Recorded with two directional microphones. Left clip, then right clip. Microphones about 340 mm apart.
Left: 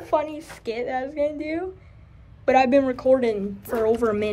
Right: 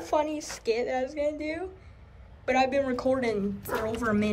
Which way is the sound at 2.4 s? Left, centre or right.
Centre.